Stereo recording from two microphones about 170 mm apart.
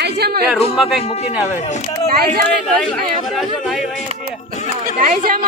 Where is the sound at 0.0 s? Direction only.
70° right (ahead or behind).